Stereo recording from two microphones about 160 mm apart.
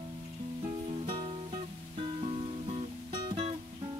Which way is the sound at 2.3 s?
40° right (ahead or behind).